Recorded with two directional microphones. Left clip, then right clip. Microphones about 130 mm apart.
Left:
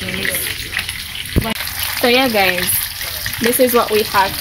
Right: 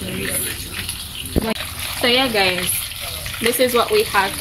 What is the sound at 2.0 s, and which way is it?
Speech, 50° left (ahead or behind).